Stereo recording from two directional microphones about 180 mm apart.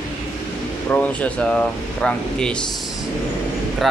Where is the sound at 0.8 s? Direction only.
10° left (ahead or behind).